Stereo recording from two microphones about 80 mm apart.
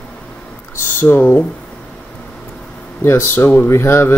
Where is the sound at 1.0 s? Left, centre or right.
Left.